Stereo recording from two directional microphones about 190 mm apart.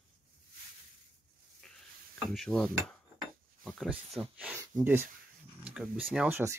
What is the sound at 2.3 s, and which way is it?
Speech, 5° left (ahead or behind).